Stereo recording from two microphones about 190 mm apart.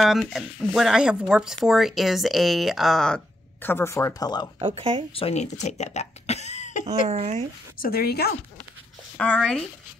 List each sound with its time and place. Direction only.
0.0 s speech: centre (ahead or behind)
3.6 s speech: 10° left (ahead or behind)
4.6 s speech: 30° right (ahead or behind)
5.1 s speech: 35° left (ahead or behind)
7.1 s speech: 35° right (ahead or behind)
7.8 s a woman's voice: 55° left (ahead or behind)
9.1 s speech: 5° left (ahead or behind)